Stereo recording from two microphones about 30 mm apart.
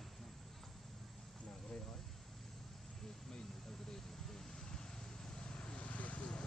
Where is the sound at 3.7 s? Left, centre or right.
Centre; by 5.8 s left.